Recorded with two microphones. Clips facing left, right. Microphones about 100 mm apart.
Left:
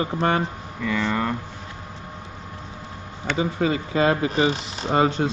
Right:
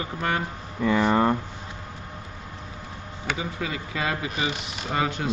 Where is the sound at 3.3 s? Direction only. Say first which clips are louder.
Left 12 dB; 35° left (ahead or behind).